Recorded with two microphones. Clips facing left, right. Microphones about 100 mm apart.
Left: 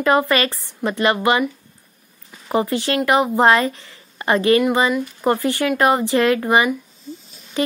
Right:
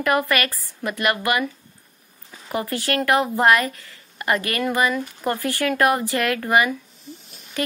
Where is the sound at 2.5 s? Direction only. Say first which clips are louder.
Left 5 dB; 20° left (ahead or behind).